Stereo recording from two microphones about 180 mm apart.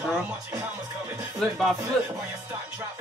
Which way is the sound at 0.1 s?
5° right (ahead or behind).